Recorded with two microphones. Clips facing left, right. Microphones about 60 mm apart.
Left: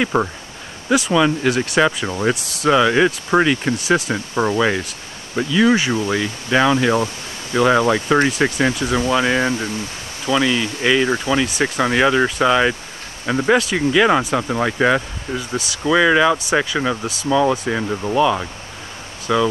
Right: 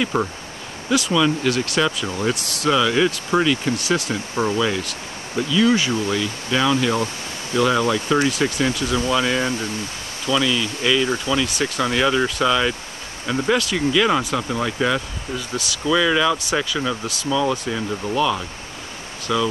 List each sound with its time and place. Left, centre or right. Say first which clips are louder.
0.0 s speech: left 3 dB; centre